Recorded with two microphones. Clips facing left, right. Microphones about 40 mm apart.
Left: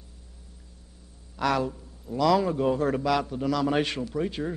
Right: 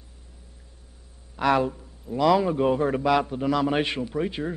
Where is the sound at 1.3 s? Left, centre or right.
Right.